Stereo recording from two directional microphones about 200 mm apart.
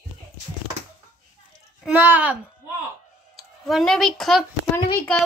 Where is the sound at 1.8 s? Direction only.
10° right (ahead or behind).